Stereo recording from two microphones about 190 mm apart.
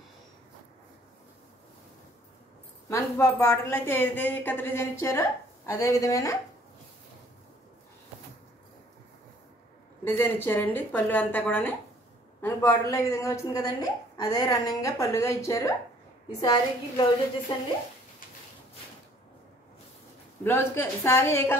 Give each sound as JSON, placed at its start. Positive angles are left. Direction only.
{"t": 2.9, "sound": "a woman's voice", "side_deg": 15}
{"t": 10.0, "sound": "a woman's voice", "side_deg": 10}
{"t": 20.4, "sound": "a woman's voice", "side_deg": 10}